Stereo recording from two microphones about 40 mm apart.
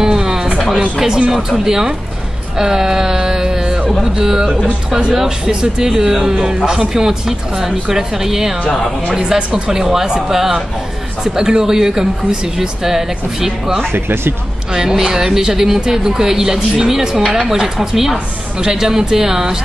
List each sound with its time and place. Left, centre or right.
0.0 s a sound: centre
0.9 s a woman's voice: centre
2.6 s a sound: centre
4.0 s a woman's voice: centre
13.9 s speech: right
14.7 s a woman's voice: centre
18.1 s a woman's voice: centre